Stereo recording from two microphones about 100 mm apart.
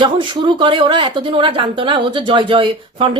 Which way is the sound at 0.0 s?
50° right (ahead or behind).